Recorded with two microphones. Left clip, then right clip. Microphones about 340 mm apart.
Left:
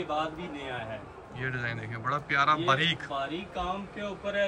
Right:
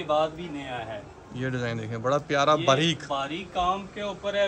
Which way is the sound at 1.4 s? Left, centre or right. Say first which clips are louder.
Right 3 dB; centre.